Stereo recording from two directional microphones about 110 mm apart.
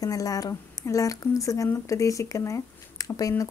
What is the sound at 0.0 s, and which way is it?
Speech, 35° left (ahead or behind).